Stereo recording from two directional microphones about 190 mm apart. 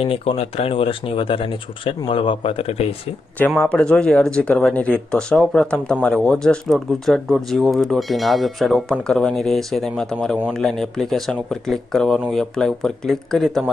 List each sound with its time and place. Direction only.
0.0 s speech: 30° left (ahead or behind)
3.3 s speech: 10° left (ahead or behind)